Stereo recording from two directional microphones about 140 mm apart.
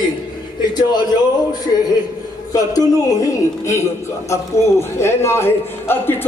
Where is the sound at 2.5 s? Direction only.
25° left (ahead or behind).